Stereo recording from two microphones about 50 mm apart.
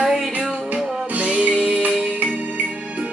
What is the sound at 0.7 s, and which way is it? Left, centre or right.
Music, right.